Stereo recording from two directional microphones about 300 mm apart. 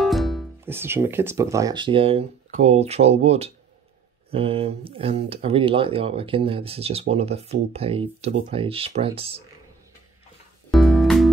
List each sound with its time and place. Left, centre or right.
0.0 s speech: centre
10.7 s music: centre